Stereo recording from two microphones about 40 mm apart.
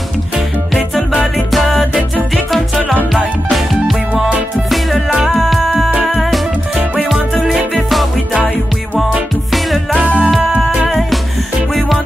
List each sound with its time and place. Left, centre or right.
1.5 s music: centre
9.9 s music: right
10.9 s music: centre